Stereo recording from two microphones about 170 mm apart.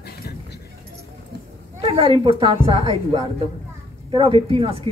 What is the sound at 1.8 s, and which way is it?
Speech, 35° right (ahead or behind).